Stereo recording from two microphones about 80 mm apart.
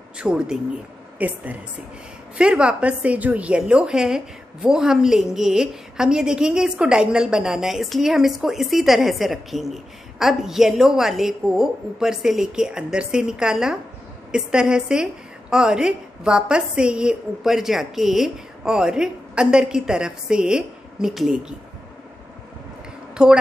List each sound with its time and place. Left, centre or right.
0.2 s a woman's voice: centre
23.2 s a woman's voice: centre